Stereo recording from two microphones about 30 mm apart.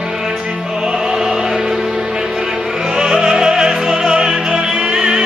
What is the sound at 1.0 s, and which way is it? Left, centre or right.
Music, centre.